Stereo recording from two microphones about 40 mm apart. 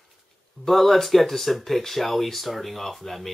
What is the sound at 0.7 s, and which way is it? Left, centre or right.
Speech, centre.